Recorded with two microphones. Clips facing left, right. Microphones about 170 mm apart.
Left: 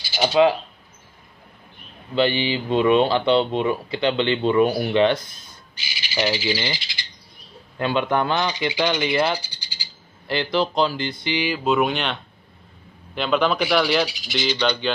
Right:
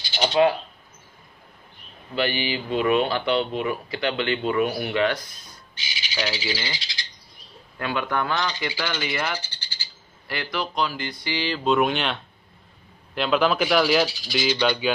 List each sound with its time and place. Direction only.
0.0 s a sound: 5° left (ahead or behind)
2.1 s speech: 25° left (ahead or behind)
5.9 s bird: 5° left (ahead or behind)
7.8 s speech: 25° left (ahead or behind)
9.1 s speech: 30° left (ahead or behind)
9.4 s bird: 10° left (ahead or behind)
10.2 s speech: 25° left (ahead or behind)
11.4 s speech: 5° left (ahead or behind)